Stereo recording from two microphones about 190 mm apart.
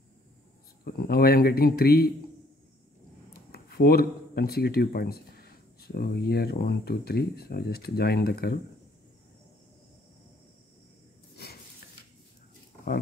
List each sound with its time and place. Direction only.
0.8 s speech: 55° left (ahead or behind)
3.3 s speech: 55° left (ahead or behind)
11.4 s a sound: 55° left (ahead or behind)